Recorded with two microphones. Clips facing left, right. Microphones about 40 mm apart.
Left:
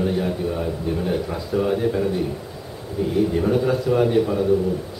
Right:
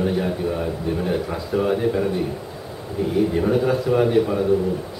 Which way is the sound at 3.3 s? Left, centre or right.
Centre.